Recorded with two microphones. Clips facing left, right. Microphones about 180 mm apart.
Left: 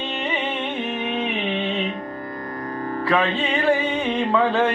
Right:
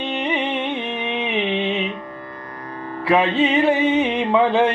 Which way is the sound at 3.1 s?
20° right (ahead or behind).